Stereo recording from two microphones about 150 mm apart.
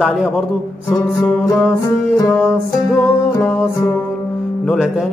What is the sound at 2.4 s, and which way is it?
Music, 5° right (ahead or behind).